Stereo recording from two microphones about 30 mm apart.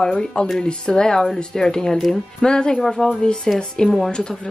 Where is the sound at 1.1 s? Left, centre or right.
Centre.